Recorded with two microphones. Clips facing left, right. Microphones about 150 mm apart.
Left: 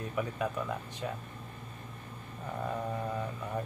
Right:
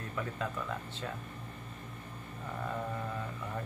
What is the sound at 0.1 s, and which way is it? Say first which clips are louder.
Speech: left 3 dB; 15° left (ahead or behind).